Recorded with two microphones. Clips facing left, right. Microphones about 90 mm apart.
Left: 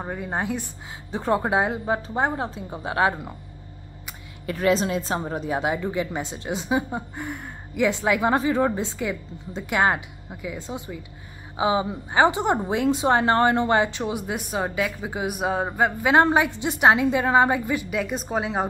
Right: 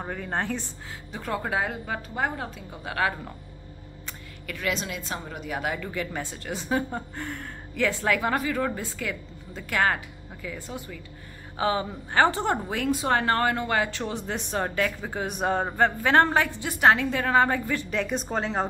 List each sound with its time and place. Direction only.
0.0 s a woman's voice: 15° left (ahead or behind)
1.1 s speech: 25° left (ahead or behind)
4.5 s a woman's voice: 35° left (ahead or behind)
5.6 s a woman's voice: 20° left (ahead or behind)